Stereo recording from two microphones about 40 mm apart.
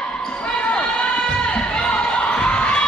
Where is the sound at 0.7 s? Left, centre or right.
Left.